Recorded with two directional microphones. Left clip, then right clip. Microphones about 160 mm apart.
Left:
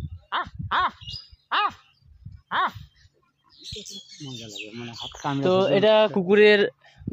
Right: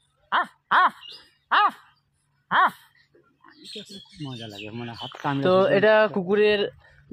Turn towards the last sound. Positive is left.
turn(degrees=55)  # may be behind; listen again after turning